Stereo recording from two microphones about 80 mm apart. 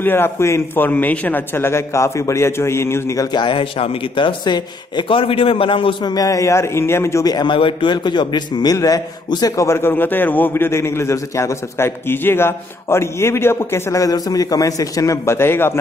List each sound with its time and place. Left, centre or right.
0.0 s a man's voice: left
0.8 s a man's voice: left
3.3 s a man's voice: left
6.1 s a man's voice: left
7.2 s a man's voice: left
8.7 s a man's voice: left
9.6 s a man's voice: left
14.0 s a man's voice: left
15.3 s a man's voice: left